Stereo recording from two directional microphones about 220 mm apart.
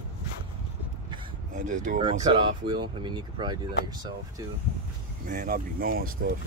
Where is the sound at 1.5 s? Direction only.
35° right (ahead or behind).